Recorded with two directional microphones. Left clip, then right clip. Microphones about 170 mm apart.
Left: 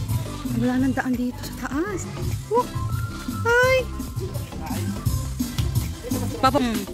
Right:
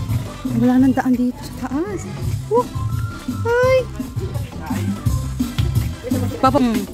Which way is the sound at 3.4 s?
Centre (ahead or behind).